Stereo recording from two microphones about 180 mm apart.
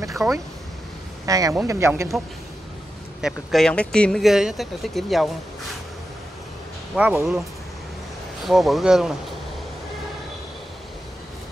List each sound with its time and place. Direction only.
0.2 s speech: 15° right (ahead or behind)
3.2 s speech: centre (ahead or behind)
7.0 s speech: 5° right (ahead or behind)
8.5 s speech: centre (ahead or behind)